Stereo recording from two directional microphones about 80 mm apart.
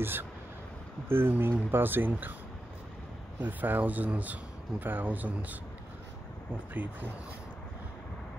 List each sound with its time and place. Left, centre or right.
0.0 s speech: right
3.3 s speech: right
6.7 s speech: right